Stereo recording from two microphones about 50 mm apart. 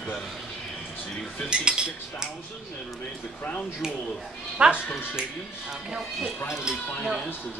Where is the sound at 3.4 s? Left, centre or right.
Left.